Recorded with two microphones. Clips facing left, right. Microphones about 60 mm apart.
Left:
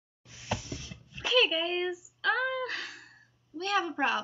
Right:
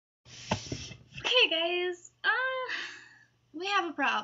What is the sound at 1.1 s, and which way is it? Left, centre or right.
Speech, centre.